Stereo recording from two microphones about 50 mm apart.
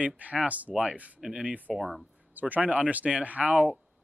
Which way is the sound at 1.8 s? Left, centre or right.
Centre.